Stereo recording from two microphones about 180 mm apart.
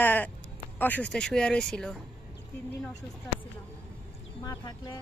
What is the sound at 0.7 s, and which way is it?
Speech, 10° left (ahead or behind).